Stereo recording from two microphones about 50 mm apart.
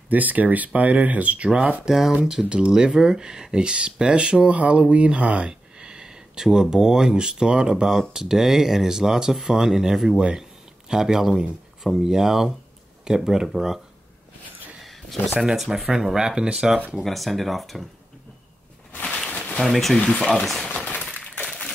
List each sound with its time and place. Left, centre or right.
0.1 s speech: right
1.9 s speech: centre
2.4 s speech: centre
2.7 s speech: centre
14.8 s a sound: centre
15.5 s speech: centre
17.0 s speech: centre
19.0 s a sound: centre
19.3 s a sound: left
19.6 s speech: centre
20.7 s breaking: left
21.0 s a sound: centre